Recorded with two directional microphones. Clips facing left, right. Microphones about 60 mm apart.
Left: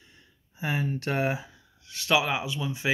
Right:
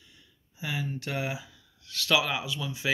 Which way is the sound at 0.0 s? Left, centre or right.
Left.